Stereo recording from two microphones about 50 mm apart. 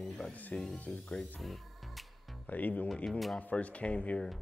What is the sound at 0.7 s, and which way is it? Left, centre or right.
Speech, left.